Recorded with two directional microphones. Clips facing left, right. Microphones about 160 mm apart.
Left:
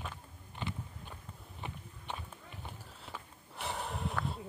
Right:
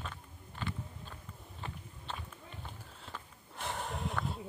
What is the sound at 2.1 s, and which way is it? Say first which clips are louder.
Run: left 1 dB; 15° left (ahead or behind).